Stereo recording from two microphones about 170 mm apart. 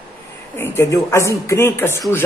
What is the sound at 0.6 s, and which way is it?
Speech, 15° left (ahead or behind).